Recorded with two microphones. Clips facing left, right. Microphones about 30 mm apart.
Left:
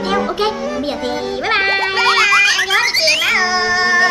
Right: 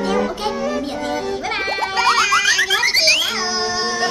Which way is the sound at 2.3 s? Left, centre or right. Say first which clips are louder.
Left 3 dB; centre.